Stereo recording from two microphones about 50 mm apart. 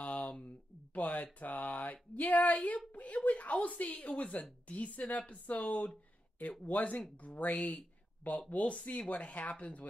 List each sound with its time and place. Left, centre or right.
0.0 s a sound: left
0.9 s a woman's voice: left
7.5 s speech: left